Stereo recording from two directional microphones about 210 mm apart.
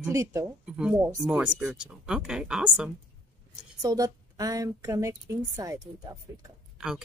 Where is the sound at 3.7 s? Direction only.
15° right (ahead or behind).